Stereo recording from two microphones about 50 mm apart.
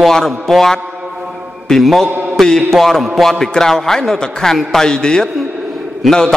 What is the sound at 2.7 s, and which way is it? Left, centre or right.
A man's voice, centre.